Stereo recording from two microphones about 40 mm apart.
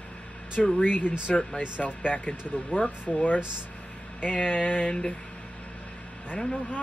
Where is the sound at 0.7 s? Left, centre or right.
Left.